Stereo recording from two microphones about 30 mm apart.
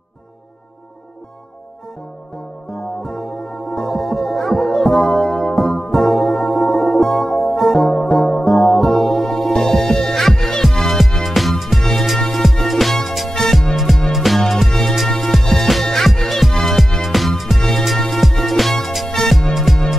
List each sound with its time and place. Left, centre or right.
2.7 s music: centre
3.8 s music: centre
14.7 s music: centre